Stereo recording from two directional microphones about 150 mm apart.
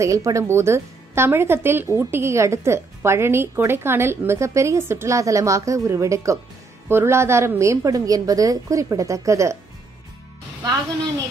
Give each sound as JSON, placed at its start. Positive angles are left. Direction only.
{"t": 0.0, "sound": "a woman's voice", "side_deg": -20}
{"t": 10.6, "sound": "a woman's voice", "side_deg": -25}